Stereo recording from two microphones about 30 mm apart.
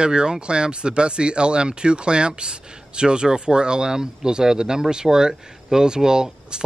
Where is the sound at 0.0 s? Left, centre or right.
Right.